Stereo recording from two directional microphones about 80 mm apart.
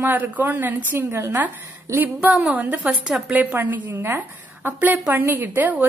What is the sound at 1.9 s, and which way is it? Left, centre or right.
A woman's voice, right.